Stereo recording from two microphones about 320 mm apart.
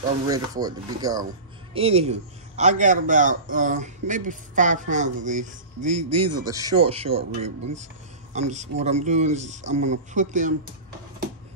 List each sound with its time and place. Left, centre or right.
0.3 s a man's voice: centre
6.0 s a man's voice: right
6.3 s a man's voice: centre